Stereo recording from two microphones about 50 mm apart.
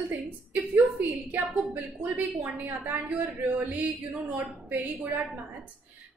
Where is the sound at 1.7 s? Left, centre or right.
Right.